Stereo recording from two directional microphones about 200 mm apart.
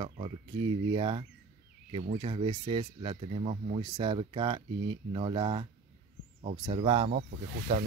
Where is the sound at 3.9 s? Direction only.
25° right (ahead or behind).